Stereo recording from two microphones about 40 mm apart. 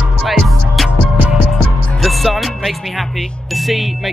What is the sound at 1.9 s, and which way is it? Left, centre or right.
Music, centre.